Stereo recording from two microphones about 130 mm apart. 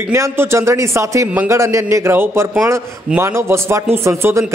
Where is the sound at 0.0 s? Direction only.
20° right (ahead or behind).